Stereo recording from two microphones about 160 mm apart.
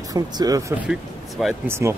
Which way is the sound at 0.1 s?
25° right (ahead or behind).